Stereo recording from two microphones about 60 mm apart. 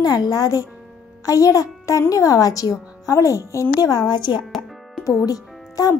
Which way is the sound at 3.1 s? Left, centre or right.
Left.